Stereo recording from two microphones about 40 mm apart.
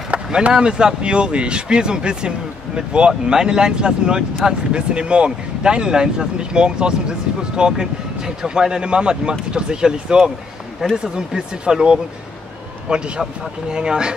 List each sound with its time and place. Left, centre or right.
0.5 s speech: centre
4.7 s speech: right